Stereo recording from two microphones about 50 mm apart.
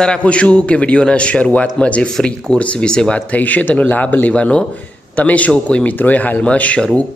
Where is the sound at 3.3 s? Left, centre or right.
Left.